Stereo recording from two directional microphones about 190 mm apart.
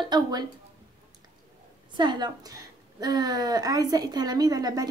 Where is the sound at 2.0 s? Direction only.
20° right (ahead or behind).